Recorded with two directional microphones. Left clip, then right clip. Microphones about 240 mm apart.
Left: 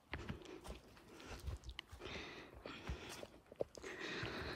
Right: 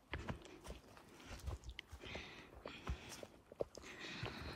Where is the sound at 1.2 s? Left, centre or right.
Centre.